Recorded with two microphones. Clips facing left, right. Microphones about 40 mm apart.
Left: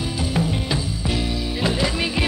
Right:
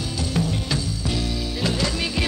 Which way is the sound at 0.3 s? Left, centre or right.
Centre.